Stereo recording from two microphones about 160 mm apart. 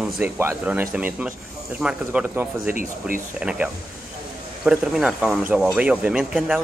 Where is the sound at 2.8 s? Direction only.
55° right (ahead or behind).